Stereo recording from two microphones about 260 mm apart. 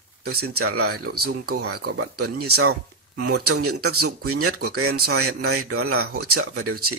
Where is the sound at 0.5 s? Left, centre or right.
Right.